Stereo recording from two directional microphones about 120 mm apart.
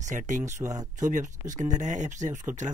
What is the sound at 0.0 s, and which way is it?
Speech, 90° right.